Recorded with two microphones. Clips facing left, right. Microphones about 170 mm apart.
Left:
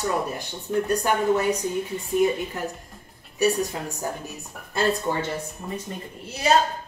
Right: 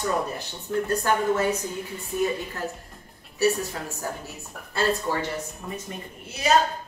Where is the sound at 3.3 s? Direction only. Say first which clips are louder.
Left 1 dB; 15° left (ahead or behind).